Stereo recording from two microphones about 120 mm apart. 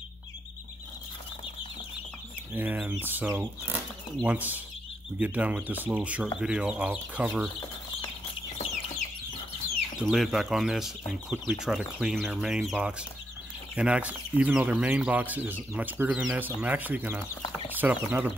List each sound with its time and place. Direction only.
2.5 s speech: 15° right (ahead or behind)
9.9 s speech: centre (ahead or behind)